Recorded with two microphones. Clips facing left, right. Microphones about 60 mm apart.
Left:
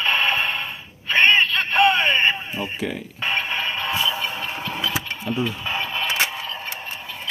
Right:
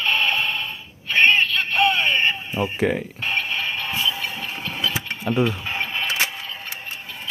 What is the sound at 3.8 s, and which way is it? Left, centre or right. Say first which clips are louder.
Music: left 2 dB; left.